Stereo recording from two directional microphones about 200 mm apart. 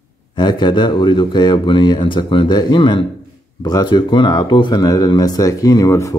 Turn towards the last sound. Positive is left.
turn(degrees=15)  # may be behind; listen again after turning